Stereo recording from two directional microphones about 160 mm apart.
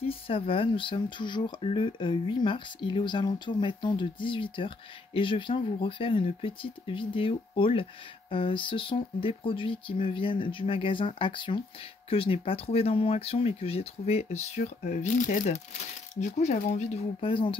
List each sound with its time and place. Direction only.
0.0 s speech: 35° left (ahead or behind)